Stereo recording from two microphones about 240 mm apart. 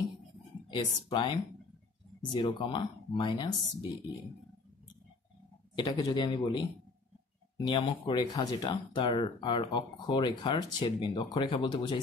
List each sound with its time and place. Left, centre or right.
0.7 s speech: centre
5.8 s speech: centre